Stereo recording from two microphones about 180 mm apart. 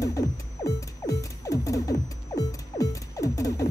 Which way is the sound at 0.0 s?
20° left (ahead or behind).